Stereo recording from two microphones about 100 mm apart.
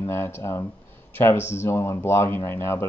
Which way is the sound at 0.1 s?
25° left (ahead or behind).